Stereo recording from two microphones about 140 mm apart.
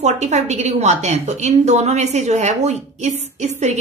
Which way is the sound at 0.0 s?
55° right (ahead or behind).